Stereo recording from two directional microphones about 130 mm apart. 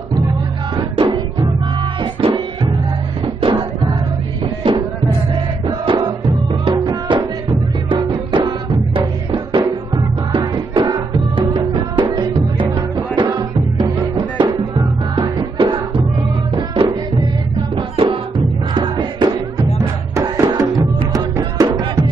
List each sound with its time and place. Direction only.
0.7 s music: 35° right (ahead or behind)
5.7 s music: 35° right (ahead or behind)
19.8 s music: 25° right (ahead or behind)